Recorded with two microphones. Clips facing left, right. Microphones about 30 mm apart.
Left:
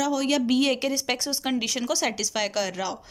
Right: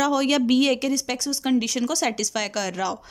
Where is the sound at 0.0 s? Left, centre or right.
Centre.